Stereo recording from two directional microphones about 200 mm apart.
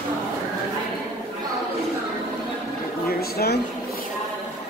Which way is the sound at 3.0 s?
50° left (ahead or behind).